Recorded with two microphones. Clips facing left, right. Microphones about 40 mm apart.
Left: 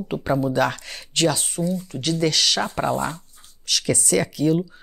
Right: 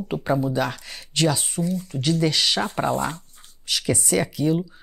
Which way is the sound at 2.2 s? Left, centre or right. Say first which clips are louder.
Left 4 dB; right.